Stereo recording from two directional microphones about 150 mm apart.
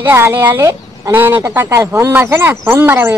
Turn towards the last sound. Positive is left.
turn(degrees=-15)  # may be behind; listen again after turning